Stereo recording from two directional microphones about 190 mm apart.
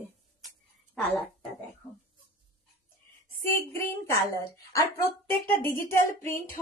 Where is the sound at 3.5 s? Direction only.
10° left (ahead or behind).